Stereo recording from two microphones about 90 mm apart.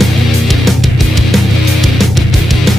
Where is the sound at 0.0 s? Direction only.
Centre (ahead or behind).